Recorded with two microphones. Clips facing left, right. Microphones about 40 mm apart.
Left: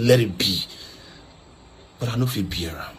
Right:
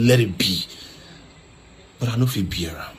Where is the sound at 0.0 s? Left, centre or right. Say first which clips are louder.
Even; right.